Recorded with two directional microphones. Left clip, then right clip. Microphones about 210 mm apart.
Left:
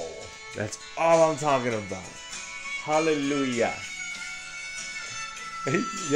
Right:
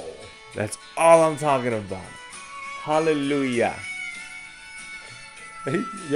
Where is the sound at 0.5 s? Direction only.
35° right (ahead or behind).